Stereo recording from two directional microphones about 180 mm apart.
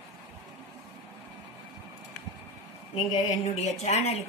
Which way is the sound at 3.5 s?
35° left (ahead or behind).